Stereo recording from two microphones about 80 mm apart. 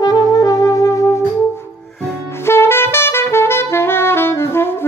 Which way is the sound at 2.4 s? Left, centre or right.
Left.